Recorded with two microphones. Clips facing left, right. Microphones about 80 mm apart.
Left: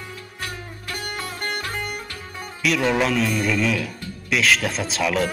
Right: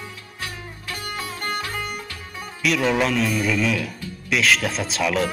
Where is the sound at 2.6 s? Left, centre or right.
Centre.